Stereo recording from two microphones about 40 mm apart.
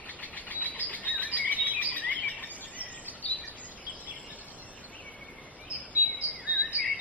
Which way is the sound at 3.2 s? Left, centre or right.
Left.